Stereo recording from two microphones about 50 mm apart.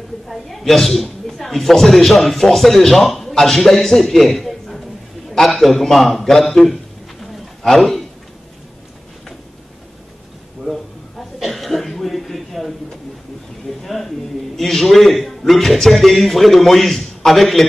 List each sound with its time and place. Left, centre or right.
0.3 s a woman's voice: centre
10.6 s chuckle: centre
13.7 s a sound: centre
14.6 s a woman's voice: centre